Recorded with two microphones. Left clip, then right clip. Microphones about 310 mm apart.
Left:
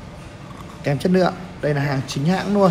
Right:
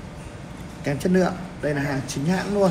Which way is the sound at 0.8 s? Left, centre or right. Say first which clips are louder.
Left 4 dB; left.